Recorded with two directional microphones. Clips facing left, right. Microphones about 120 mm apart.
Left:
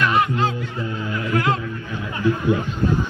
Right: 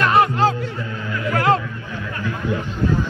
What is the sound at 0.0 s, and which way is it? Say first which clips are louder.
Music: right 3 dB; 40° right (ahead or behind).